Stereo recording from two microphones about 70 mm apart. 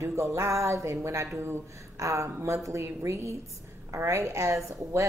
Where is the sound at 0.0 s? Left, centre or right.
Right.